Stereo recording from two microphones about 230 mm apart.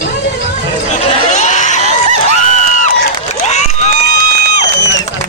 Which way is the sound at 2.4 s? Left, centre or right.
Left.